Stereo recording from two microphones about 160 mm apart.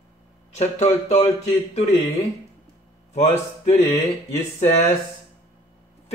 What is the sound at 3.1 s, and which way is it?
Speech, 40° left (ahead or behind).